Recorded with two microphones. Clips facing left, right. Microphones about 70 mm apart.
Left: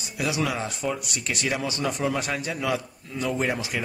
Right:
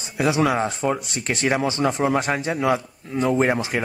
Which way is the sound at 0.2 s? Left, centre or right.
Right.